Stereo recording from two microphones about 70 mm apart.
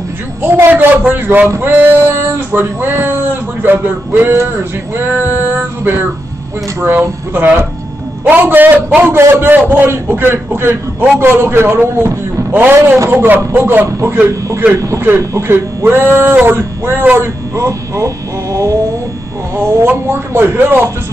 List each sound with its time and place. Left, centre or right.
0.4 s speech: right
4.9 s male singing: right
6.8 s a man's voice: right
15.3 s a man's voice: right
17.6 s speech: right
19.5 s a man's voice: right